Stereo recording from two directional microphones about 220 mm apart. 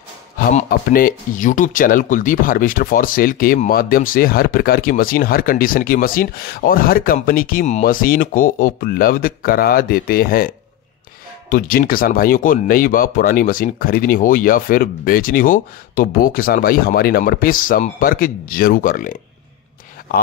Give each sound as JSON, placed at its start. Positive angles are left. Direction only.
{"t": 0.5, "sound": "speech", "side_deg": 35}
{"t": 11.5, "sound": "speech", "side_deg": 40}